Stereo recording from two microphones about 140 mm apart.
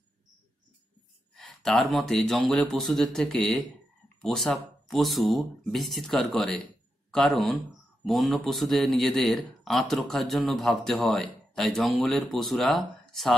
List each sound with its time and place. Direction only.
1.3 s speech: centre (ahead or behind)